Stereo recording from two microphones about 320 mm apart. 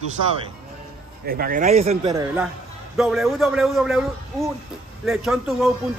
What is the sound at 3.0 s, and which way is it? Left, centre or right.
A man's voice, centre.